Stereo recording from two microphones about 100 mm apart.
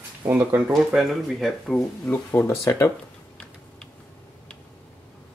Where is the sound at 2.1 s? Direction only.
25° left (ahead or behind).